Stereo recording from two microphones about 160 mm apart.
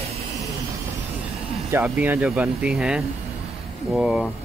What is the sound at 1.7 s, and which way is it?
Speech, 10° right (ahead or behind).